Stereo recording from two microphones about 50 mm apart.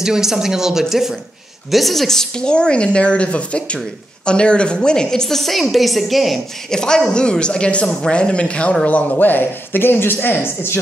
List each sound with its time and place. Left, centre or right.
0.0 s a woman's voice: centre
6.7 s speech: centre; by 10.8 s left